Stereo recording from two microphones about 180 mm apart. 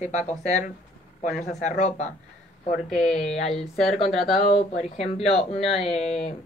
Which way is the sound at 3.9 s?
35° left (ahead or behind).